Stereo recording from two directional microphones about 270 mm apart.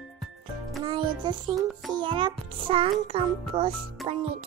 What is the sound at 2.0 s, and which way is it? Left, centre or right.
A child's voice, centre.